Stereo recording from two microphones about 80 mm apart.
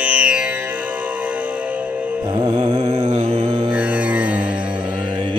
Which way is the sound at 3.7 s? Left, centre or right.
Centre.